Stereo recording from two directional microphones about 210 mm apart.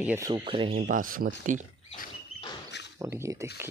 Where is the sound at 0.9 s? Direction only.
40° right (ahead or behind).